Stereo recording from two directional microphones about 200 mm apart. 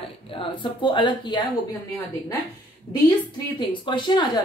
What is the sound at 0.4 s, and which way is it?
A woman's voice, 25° left (ahead or behind).